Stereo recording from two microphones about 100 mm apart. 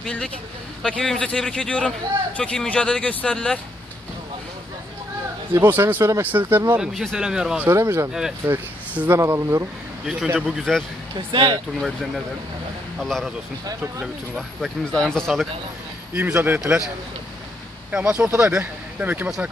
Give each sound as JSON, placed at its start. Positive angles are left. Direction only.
{"t": 0.0, "sound": "speech", "side_deg": 10}
{"t": 5.5, "sound": "speech", "side_deg": -20}
{"t": 6.9, "sound": "speech", "side_deg": 0}
{"t": 7.6, "sound": "speech", "side_deg": -25}
{"t": 9.2, "sound": "speech", "side_deg": -30}
{"t": 10.4, "sound": "speech", "side_deg": 0}
{"t": 11.1, "sound": "speech", "side_deg": -55}
{"t": 13.0, "sound": "speech", "side_deg": 5}
{"t": 14.3, "sound": "speech", "side_deg": 5}
{"t": 16.2, "sound": "speech", "side_deg": -15}
{"t": 17.9, "sound": "speech", "side_deg": -10}